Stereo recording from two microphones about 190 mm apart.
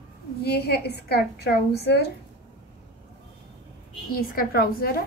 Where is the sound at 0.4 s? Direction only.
60° left (ahead or behind).